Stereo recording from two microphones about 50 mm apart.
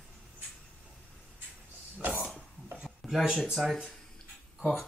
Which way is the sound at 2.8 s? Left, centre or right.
Centre.